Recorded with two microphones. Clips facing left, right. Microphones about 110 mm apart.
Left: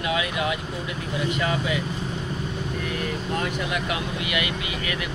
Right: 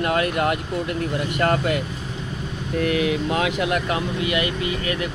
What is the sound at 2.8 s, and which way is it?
Speech, 80° right.